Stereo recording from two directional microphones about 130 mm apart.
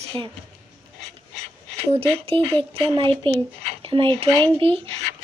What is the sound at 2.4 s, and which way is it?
Speech, 15° left (ahead or behind).